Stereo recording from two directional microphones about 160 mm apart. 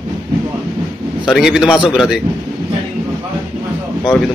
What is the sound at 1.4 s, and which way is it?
Mantra, 5° right (ahead or behind).